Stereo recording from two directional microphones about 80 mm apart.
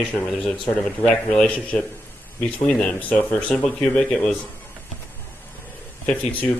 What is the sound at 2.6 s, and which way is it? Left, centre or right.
A man's voice, centre.